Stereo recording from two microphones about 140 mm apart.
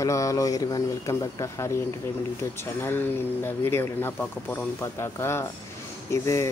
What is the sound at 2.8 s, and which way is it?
Speech, 15° left (ahead or behind).